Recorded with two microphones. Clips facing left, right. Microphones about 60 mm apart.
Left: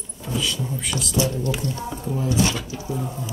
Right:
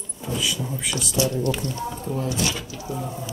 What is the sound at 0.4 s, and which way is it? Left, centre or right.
Speech, centre.